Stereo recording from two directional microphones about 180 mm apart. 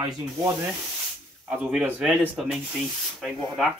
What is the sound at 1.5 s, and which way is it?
Speech, 5° right (ahead or behind).